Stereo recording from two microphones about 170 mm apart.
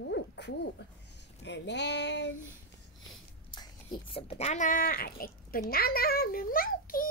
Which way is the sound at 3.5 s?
25° left (ahead or behind).